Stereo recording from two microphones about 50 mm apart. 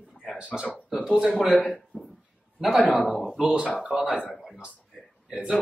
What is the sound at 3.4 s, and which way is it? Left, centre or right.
Speech, centre.